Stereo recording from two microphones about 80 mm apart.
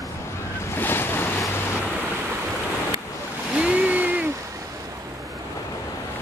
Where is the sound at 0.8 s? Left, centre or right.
Left.